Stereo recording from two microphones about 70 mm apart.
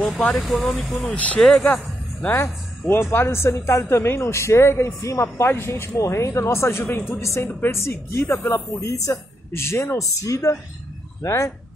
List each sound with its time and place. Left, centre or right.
0.2 s speech: centre
1.1 s speech: centre
1.4 s speech: centre
2.9 s speech: left
6.8 s speech: left
7.1 s speech: left
9.5 s speech: left